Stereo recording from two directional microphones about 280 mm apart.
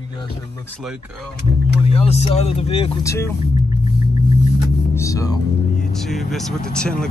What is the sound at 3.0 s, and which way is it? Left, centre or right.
Speech, centre.